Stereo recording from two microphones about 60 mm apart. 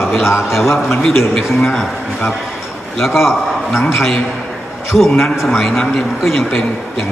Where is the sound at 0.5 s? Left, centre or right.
Centre.